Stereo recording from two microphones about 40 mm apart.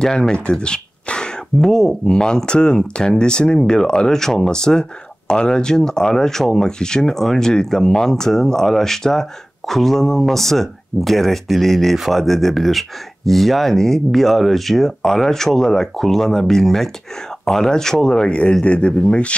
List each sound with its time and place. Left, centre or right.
0.0 s speech: centre
1.6 s speech: centre; by 18.9 s left